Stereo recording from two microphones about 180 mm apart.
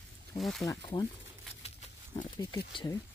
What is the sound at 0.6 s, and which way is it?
Speech, 20° left (ahead or behind).